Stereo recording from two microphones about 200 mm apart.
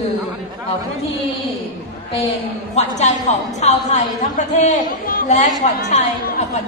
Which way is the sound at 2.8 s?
35° left (ahead or behind).